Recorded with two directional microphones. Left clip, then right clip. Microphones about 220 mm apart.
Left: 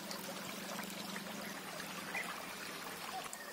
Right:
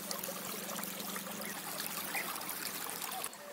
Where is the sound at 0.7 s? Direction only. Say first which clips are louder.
Right 2 dB; 55° right (ahead or behind).